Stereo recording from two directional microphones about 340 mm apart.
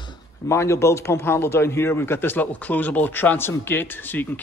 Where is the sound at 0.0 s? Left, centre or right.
Centre.